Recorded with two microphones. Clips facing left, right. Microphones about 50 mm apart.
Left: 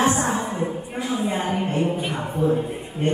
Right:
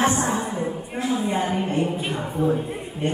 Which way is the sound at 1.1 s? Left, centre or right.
Left.